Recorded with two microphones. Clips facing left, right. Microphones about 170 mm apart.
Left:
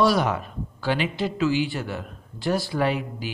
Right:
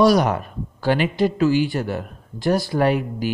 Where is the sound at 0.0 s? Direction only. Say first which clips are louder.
Right 5 dB; 45° right (ahead or behind).